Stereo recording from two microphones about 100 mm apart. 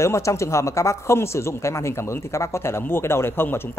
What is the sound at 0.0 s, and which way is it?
Speech, 30° left (ahead or behind).